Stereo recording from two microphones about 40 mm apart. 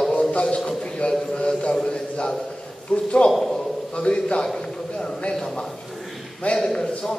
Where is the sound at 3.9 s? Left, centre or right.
Left.